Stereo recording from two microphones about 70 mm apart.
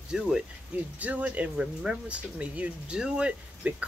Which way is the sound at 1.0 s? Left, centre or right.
Right.